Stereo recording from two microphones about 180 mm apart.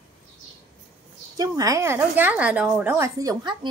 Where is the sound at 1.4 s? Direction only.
20° right (ahead or behind).